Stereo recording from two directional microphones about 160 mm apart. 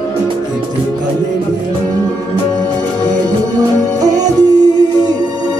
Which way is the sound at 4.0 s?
25° right (ahead or behind).